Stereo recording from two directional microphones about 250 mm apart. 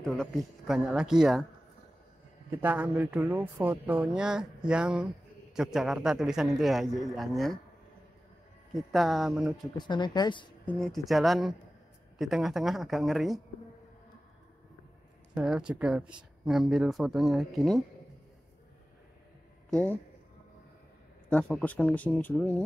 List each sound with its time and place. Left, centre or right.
0.0 s speech: centre
2.6 s speech: centre
8.7 s speech: centre
9.8 s speech: centre
10.6 s speech: centre
15.3 s speech: centre
19.7 s speech: centre
21.3 s speech: centre